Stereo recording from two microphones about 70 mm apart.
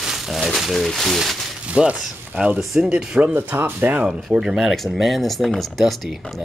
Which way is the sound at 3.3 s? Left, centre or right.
Right.